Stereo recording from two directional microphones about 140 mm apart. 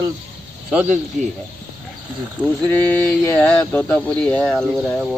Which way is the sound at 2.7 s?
10° left (ahead or behind).